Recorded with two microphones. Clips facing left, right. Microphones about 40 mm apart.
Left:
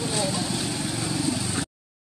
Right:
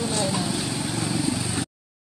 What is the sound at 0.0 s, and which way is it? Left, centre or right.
Vehicle, centre.